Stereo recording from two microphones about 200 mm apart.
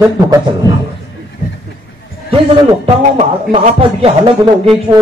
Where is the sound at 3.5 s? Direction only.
30° right (ahead or behind).